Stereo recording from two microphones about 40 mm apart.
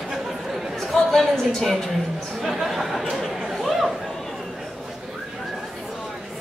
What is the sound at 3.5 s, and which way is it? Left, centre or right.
Chatter, centre.